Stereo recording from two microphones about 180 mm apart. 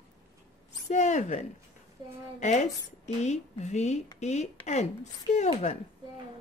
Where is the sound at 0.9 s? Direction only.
40° left (ahead or behind).